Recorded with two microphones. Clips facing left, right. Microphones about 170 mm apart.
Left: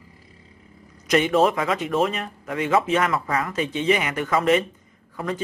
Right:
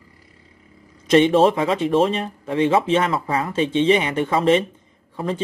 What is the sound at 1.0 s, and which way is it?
Speech, 30° right (ahead or behind).